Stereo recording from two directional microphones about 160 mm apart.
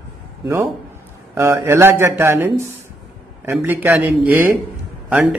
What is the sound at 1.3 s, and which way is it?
Speech, 15° right (ahead or behind).